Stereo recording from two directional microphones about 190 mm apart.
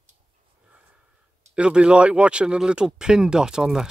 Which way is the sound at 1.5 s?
5° right (ahead or behind).